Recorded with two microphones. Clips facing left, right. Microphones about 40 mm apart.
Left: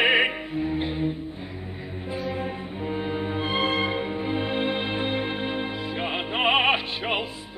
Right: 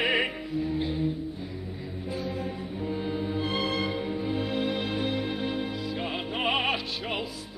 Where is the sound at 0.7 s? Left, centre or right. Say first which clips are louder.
Left 2 dB; left.